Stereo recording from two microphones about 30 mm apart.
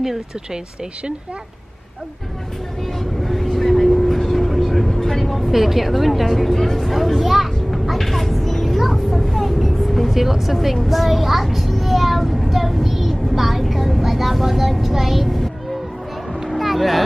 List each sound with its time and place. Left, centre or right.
3.0 s vehicle: centre
5.2 s a woman's voice: centre
7.7 s music: centre
8.0 s vehicle: centre
10.1 s a woman's voice: centre
11.4 s a sound: centre
12.2 s child singing: centre
12.4 s vehicle: centre
15.2 s music: centre